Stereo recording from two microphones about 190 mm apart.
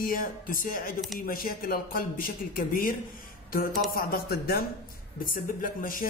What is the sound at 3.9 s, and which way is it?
A man's voice, 50° left (ahead or behind).